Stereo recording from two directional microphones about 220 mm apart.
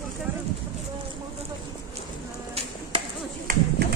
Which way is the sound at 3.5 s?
40° right (ahead or behind).